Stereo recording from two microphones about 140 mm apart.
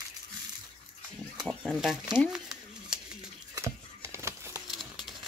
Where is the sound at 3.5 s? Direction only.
20° right (ahead or behind).